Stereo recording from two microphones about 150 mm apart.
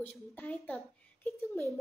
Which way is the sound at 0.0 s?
10° left (ahead or behind).